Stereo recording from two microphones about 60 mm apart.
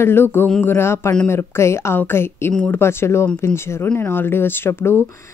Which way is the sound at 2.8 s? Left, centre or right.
Left.